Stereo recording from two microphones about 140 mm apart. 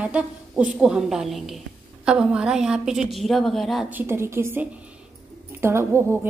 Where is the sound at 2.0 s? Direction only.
5° right (ahead or behind).